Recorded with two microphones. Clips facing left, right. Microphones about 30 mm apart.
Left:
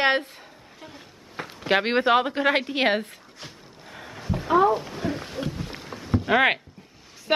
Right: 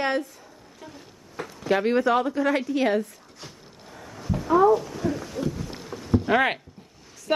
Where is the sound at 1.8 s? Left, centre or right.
Left.